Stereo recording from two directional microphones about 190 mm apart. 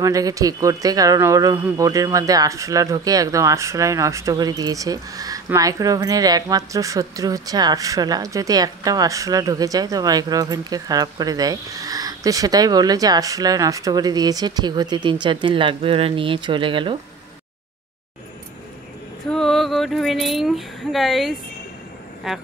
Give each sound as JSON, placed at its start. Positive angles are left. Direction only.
{"t": 0.0, "sound": "speech", "side_deg": -15}
{"t": 19.3, "sound": "speech", "side_deg": 0}